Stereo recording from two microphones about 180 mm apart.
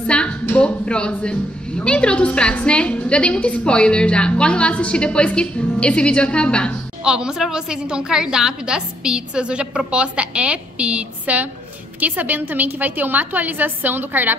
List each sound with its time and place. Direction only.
0.0 s a woman's voice: 5° left (ahead or behind); by 14.3 s 10° right (ahead or behind)